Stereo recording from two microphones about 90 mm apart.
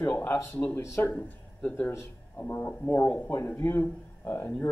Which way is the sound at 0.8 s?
30° left (ahead or behind).